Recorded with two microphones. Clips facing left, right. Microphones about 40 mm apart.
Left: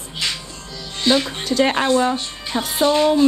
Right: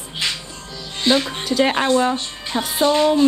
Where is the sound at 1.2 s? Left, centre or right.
Centre.